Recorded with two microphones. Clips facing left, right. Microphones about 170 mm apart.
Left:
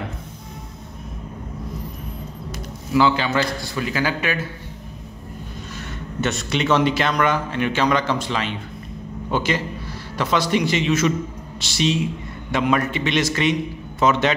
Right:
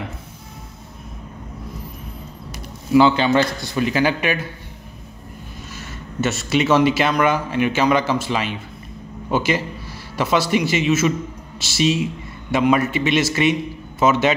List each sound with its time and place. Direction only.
2.9 s a man's voice: 20° right (ahead or behind)
6.2 s a man's voice: 5° right (ahead or behind)